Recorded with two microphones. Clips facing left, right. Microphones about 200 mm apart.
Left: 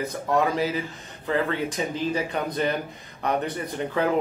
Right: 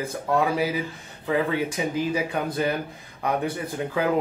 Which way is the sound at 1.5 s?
10° right (ahead or behind).